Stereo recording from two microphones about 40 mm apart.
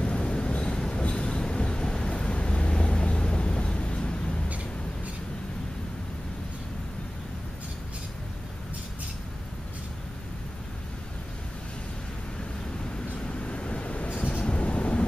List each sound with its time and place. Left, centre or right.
0.0 s vehicle: left
0.7 s a sound: centre
1.0 s vehicle: left
13.3 s vehicle: left
14.4 s train: left